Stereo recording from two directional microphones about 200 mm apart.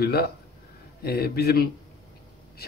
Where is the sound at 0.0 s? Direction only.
50° left (ahead or behind).